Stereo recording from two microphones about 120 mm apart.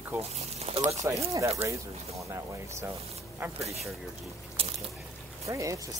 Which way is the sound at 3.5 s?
60° right (ahead or behind).